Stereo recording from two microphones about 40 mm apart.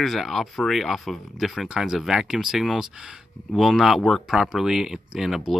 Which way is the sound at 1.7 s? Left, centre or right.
Centre.